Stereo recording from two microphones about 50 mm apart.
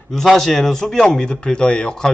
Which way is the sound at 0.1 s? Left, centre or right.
Centre.